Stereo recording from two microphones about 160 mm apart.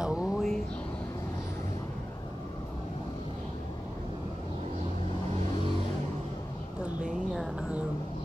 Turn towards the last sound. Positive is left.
turn(degrees=-5)  # may be behind; listen again after turning